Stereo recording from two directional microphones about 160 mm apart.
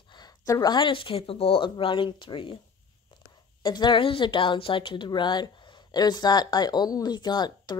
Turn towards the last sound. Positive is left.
turn(degrees=25)  # may be behind; listen again after turning